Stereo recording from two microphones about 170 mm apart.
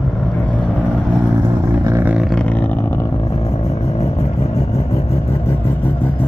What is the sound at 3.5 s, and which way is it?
Vehicle, 40° left (ahead or behind).